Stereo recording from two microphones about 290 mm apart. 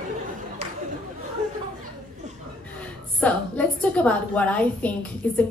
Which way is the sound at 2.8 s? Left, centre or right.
Centre.